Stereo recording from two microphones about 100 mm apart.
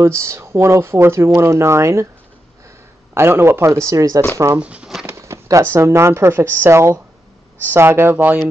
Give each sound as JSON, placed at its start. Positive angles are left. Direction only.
{"t": 0.0, "sound": "speech", "side_deg": -25}
{"t": 3.2, "sound": "speech", "side_deg": -25}
{"t": 4.6, "sound": "a sound", "side_deg": -10}
{"t": 5.0, "sound": "speech", "side_deg": -30}